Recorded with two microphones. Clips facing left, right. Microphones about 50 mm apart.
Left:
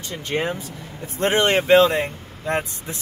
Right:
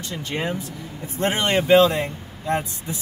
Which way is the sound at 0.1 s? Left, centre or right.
Left.